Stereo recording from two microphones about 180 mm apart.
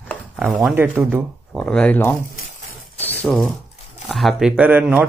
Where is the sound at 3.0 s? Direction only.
10° left (ahead or behind).